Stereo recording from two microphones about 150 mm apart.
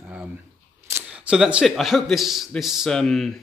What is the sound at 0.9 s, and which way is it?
Speech, 5° right (ahead or behind).